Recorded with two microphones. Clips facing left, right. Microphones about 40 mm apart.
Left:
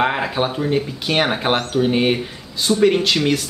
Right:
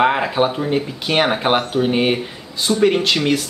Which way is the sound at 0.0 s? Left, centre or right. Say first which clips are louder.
Right 3 dB; centre.